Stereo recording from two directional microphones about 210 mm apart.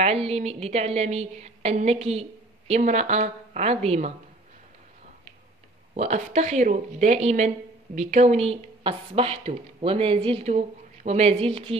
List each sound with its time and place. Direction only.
0.0 s speech: 30° right (ahead or behind)
5.9 s a woman's voice: 35° right (ahead or behind)